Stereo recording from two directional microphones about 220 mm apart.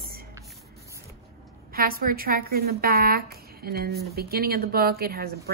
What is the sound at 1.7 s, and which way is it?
A woman's voice, 40° right (ahead or behind).